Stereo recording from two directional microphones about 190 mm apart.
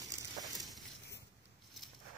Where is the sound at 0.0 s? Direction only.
20° right (ahead or behind).